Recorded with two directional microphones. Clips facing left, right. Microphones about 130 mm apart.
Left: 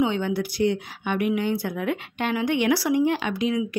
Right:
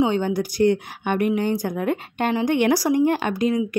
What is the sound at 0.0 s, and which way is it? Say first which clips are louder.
Speech: right 3 dB; 40° right (ahead or behind).